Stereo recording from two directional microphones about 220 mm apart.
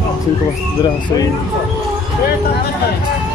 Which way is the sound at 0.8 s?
15° left (ahead or behind).